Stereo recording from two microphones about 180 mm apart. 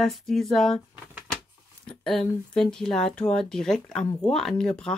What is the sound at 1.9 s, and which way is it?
Speech, 5° left (ahead or behind).